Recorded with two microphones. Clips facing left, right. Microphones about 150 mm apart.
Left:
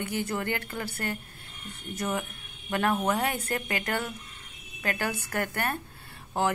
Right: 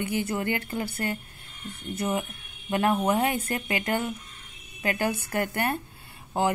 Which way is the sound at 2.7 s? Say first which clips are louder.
Right 3 dB; 15° right (ahead or behind).